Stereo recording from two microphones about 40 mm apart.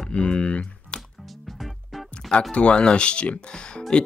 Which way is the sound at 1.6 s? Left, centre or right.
Centre.